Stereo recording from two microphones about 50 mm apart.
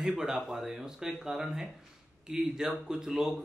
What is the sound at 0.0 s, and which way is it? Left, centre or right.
Speech, centre.